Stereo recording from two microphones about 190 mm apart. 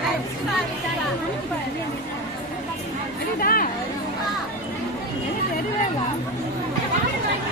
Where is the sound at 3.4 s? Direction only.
50° left (ahead or behind).